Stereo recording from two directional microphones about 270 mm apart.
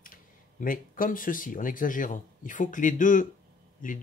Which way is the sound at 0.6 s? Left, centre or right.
Left.